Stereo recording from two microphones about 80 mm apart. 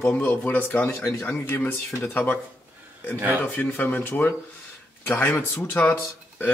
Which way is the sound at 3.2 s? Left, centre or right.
Right.